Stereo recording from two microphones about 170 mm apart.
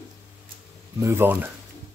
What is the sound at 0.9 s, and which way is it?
Speech, 15° right (ahead or behind).